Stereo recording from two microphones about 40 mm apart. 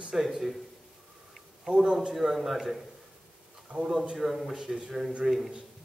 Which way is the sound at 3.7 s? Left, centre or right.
Right.